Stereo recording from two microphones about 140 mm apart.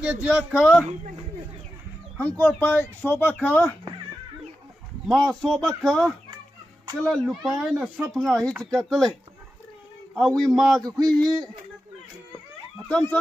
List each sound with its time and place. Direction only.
0.0 s speech: 10° right (ahead or behind)
2.1 s speech: 10° left (ahead or behind)
5.0 s speech: 5° left (ahead or behind)
10.1 s speech: 5° left (ahead or behind)
10.8 s a sound: 30° right (ahead or behind)
11.1 s speech: 5° left (ahead or behind)
12.8 s speech: 10° left (ahead or behind)